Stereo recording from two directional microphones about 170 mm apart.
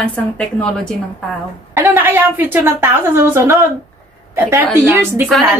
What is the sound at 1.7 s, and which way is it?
A woman's voice, 15° right (ahead or behind).